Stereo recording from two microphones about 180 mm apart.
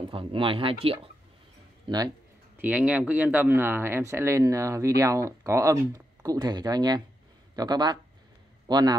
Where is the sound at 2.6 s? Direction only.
10° right (ahead or behind).